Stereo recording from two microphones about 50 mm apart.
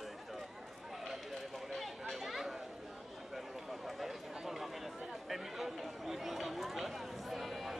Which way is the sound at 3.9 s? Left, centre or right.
Centre.